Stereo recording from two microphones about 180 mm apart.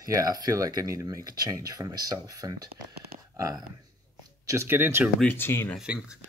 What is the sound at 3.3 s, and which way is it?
Speech, 20° right (ahead or behind).